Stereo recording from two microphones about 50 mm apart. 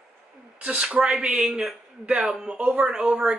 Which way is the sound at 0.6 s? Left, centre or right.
Right.